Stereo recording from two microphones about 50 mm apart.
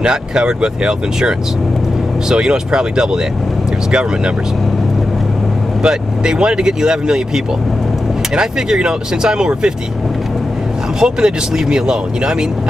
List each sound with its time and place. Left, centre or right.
0.0 s speech: centre
5.8 s speech: centre
11.0 s speech: centre